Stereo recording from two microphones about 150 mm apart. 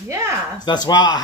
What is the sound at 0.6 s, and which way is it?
Speech, 30° left (ahead or behind).